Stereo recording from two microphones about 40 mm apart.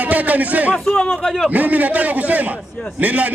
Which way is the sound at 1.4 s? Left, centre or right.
Right.